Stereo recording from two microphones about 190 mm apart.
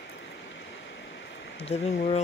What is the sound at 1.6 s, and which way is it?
Speech, 35° left (ahead or behind).